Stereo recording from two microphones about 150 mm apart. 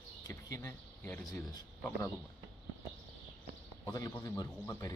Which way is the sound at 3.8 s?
25° left (ahead or behind).